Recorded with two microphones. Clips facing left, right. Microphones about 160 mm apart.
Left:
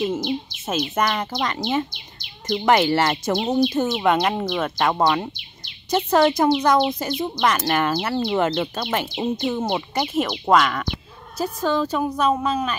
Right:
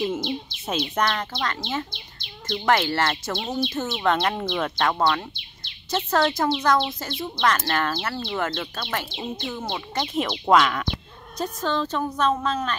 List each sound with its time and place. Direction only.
0.7 s speech: 5° left (ahead or behind)
4.9 s speech: 20° left (ahead or behind)
10.4 s speech: centre (ahead or behind)